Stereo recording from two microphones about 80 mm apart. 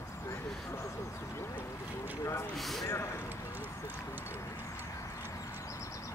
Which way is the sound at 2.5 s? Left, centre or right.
Centre.